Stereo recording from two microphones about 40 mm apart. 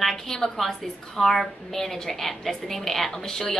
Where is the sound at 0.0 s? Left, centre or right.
Centre.